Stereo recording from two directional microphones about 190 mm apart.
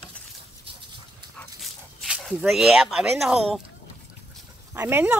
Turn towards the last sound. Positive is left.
turn(degrees=-10)  # may be behind; listen again after turning